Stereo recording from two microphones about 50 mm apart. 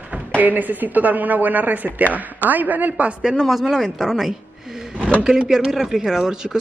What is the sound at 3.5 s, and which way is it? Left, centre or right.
Speech, centre.